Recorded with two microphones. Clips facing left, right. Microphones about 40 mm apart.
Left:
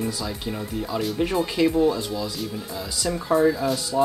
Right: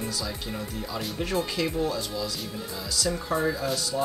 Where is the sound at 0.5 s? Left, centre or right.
Centre.